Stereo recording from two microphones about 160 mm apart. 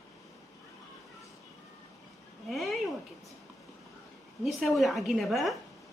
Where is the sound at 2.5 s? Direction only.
Centre (ahead or behind).